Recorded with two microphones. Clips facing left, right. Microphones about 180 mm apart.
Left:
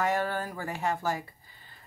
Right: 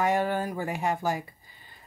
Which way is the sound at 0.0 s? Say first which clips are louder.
Right 3 dB; 15° right (ahead or behind).